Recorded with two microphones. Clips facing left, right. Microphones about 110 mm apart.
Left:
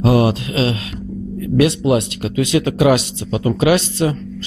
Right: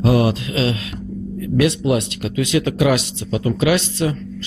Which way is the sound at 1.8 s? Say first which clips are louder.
Left 3 dB; 40° left (ahead or behind).